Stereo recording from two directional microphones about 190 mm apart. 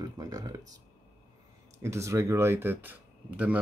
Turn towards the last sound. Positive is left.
turn(degrees=-5)  # may be behind; listen again after turning